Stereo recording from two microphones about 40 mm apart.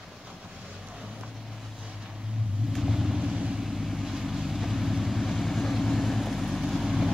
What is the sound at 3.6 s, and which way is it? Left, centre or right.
Vehicle, centre.